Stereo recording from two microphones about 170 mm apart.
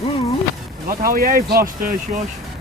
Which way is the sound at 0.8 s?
60° right (ahead or behind).